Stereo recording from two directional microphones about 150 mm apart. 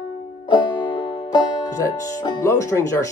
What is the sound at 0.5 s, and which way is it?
Music, 30° left (ahead or behind).